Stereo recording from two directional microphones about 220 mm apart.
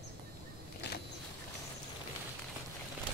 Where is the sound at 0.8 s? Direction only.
50° left (ahead or behind).